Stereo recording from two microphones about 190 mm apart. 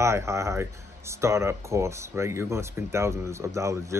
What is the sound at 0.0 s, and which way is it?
Speech, 15° right (ahead or behind).